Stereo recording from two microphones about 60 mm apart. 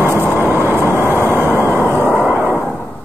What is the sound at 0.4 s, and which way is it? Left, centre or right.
Vehicle, right.